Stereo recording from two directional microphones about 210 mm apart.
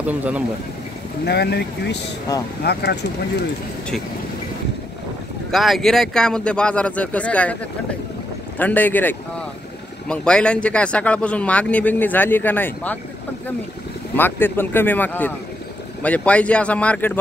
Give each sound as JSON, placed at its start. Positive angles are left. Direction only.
{"t": 0.0, "sound": "speech", "side_deg": -5}
{"t": 1.2, "sound": "speech", "side_deg": 50}
{"t": 5.5, "sound": "a man's voice", "side_deg": 0}
{"t": 8.5, "sound": "speech", "side_deg": 10}
{"t": 14.1, "sound": "speech", "side_deg": 10}